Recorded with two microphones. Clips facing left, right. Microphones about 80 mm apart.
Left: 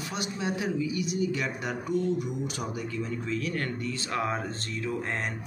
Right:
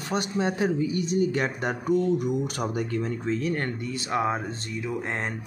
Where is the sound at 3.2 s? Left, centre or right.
Right.